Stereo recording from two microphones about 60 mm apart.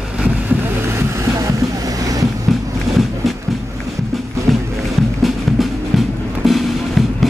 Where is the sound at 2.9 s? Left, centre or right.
Centre.